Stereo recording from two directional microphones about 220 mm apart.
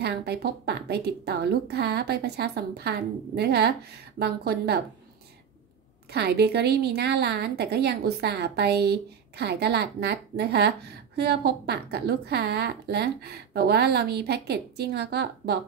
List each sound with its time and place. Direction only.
0.0 s a woman's voice: 45° right (ahead or behind)
6.0 s a woman's voice: 45° right (ahead or behind)